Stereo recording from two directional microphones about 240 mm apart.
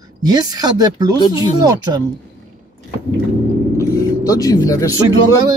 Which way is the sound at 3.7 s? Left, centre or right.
Centre.